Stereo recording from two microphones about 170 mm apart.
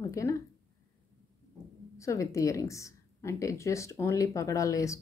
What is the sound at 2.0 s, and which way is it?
A woman's voice, 20° left (ahead or behind).